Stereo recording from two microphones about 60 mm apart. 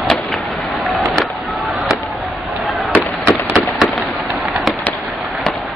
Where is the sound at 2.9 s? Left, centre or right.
Right.